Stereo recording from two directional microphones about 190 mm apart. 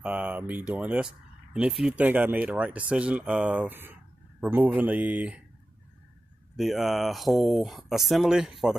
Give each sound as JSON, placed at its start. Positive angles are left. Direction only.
{"t": 0.0, "sound": "speech", "side_deg": -5}
{"t": 6.5, "sound": "speech", "side_deg": 0}